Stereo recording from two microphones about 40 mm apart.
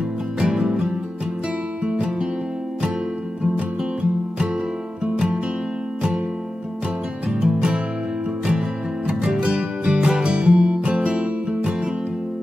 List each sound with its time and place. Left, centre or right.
0.4 s music: right
5.0 s music: right
7.2 s music: centre
7.5 s music: right